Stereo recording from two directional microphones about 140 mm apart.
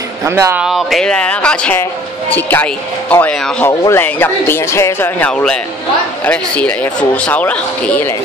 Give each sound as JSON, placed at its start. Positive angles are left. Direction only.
{"t": 0.2, "sound": "speech", "side_deg": -20}
{"t": 0.7, "sound": "speech", "side_deg": 0}